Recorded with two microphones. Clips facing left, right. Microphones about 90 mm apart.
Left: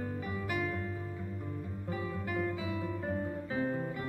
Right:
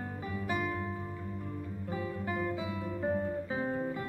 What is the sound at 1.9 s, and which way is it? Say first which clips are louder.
Music: right 1 dB; 25° right (ahead or behind).